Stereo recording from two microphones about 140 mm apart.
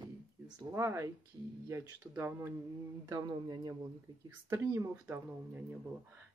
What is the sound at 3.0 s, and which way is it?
Speech, 30° right (ahead or behind).